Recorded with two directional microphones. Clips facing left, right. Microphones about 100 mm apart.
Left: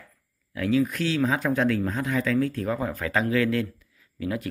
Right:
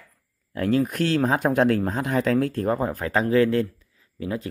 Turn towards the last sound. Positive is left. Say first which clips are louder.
# even
turn(degrees=-25)  # may be behind; listen again after turning